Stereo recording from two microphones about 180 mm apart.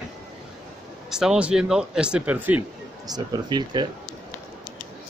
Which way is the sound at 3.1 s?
25° right (ahead or behind).